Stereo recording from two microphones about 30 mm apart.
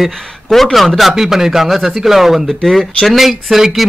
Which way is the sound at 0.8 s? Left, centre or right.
Centre.